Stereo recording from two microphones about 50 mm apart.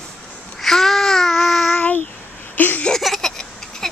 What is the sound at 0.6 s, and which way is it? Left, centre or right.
Babbling, centre.